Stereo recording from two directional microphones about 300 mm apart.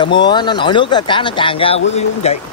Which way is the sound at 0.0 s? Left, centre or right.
Centre.